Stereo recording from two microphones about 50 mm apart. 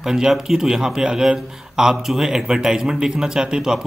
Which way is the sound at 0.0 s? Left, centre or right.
Centre.